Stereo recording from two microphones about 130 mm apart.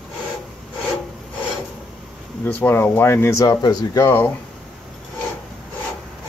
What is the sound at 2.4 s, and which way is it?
Speech, 15° left (ahead or behind).